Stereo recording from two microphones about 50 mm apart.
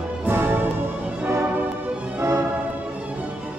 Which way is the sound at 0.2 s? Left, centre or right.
Right.